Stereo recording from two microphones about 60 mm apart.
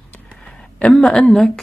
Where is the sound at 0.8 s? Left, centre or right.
Centre.